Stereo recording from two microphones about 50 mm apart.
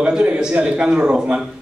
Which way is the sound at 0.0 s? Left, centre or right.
Right.